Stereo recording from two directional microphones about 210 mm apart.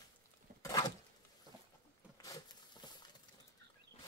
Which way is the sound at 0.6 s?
20° left (ahead or behind).